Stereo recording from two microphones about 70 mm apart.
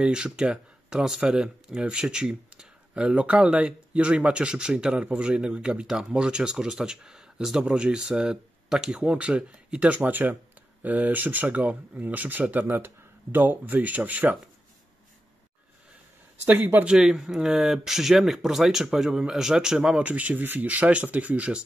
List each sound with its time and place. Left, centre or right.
0.0 s speech: centre
16.4 s speech: right
16.9 s speech: centre
20.0 s speech: centre